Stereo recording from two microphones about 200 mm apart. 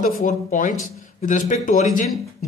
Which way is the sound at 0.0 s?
40° left (ahead or behind).